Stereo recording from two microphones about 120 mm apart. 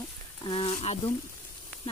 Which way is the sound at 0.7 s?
70° left (ahead or behind).